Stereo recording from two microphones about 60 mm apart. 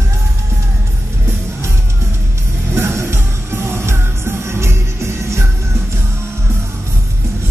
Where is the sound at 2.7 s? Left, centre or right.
Right.